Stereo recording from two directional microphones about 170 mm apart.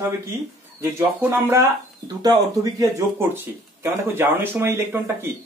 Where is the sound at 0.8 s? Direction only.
15° right (ahead or behind).